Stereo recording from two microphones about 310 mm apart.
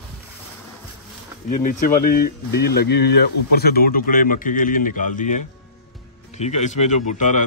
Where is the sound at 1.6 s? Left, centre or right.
Left.